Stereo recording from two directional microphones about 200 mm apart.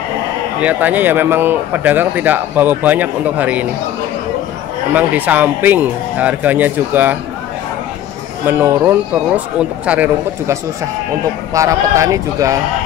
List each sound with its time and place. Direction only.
0.6 s speech: 10° right (ahead or behind)
4.9 s speech: 10° right (ahead or behind)
8.5 s speech: 10° right (ahead or behind)